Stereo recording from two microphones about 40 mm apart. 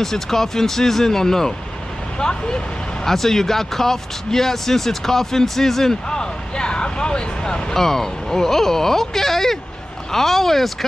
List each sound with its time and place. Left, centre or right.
0.0 s speech: centre
3.1 s speech: centre
6.0 s vehicle: centre
7.8 s speech: centre